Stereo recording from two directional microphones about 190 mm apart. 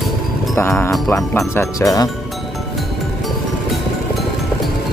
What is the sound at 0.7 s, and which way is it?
Music, centre (ahead or behind).